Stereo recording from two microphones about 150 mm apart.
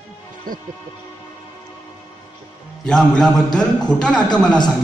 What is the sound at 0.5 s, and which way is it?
Speech, 65° right (ahead or behind).